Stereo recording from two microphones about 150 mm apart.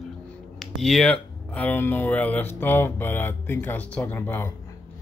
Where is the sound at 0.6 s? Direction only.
Centre (ahead or behind).